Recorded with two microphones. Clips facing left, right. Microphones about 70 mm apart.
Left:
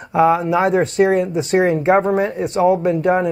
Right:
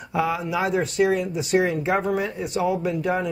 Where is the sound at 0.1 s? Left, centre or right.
Left.